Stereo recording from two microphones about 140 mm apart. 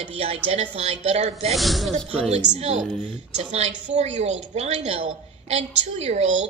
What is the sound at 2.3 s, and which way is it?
A woman's voice, 50° right (ahead or behind).